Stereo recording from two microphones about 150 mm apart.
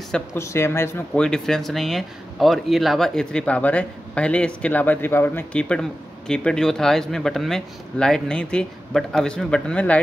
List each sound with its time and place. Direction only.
0.3 s speech: 20° left (ahead or behind)
1.2 s speech: 5° left (ahead or behind)